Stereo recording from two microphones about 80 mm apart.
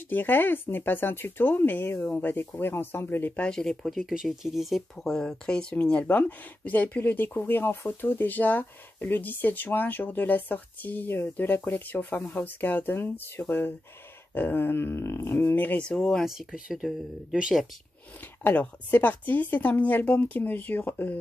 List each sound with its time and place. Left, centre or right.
0.1 s speech: left
3.3 s speech: centre
15.8 s speech: centre
16.3 s speech: centre
18.2 s speech: left